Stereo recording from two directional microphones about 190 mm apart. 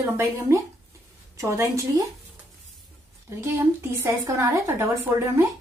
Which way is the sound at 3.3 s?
10° right (ahead or behind).